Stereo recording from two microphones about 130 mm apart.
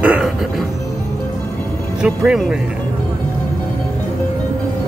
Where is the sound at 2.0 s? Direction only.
5° right (ahead or behind).